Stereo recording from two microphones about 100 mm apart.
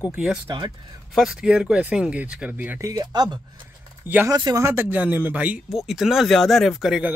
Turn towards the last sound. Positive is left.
turn(degrees=-5)  # may be behind; listen again after turning